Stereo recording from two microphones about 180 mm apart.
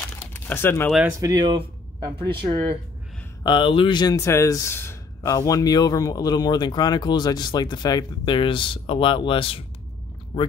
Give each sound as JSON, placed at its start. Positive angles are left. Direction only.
{"t": 0.3, "sound": "a sound", "side_deg": 10}
{"t": 1.0, "sound": "speech", "side_deg": -20}
{"t": 3.4, "sound": "speech", "side_deg": 25}